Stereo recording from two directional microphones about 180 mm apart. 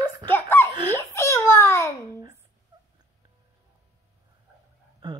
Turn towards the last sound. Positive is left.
turn(degrees=-25)  # may be behind; listen again after turning